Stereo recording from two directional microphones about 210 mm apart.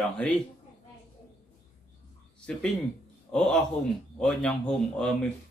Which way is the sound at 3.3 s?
5° left (ahead or behind).